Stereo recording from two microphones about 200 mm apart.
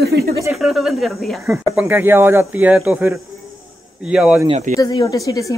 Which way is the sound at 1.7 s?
10° right (ahead or behind).